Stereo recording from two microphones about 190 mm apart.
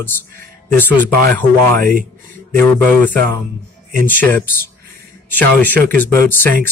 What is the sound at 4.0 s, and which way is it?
Speech, 10° left (ahead or behind).